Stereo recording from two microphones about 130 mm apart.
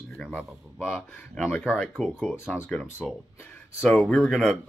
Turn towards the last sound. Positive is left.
turn(degrees=0)  # may be behind; listen again after turning